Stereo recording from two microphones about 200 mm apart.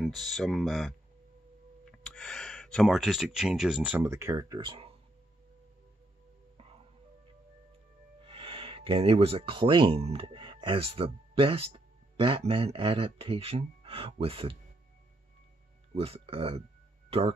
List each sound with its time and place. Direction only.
0.0 s speech: centre (ahead or behind); by 4.9 s 25° right (ahead or behind)
8.2 s speech: 30° right (ahead or behind)
15.9 s speech: 30° right (ahead or behind)